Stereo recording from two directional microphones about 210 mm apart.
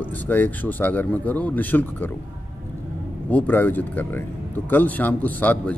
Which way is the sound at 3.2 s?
10° left (ahead or behind).